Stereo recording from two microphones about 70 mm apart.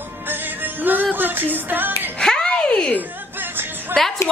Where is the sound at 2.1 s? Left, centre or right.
Centre.